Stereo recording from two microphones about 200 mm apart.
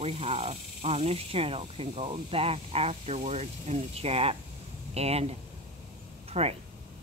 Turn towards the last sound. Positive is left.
turn(degrees=-30)  # may be behind; listen again after turning